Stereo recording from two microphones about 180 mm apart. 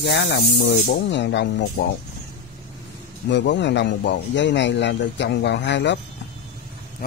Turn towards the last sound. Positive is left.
turn(degrees=75)  # may be behind; listen again after turning